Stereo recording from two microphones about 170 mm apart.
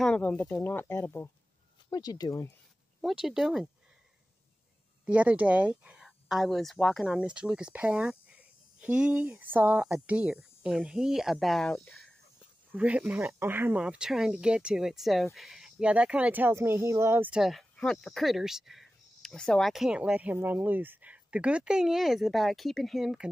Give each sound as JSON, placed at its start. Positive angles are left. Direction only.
{"t": 0.0, "sound": "speech", "side_deg": 10}
{"t": 3.0, "sound": "speech", "side_deg": 0}
{"t": 5.0, "sound": "speech", "side_deg": -10}